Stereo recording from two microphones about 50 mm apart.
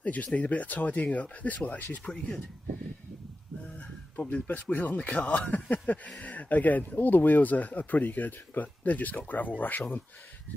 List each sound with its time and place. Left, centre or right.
0.0 s speech: left
2.0 s speech: centre
3.6 s speech: left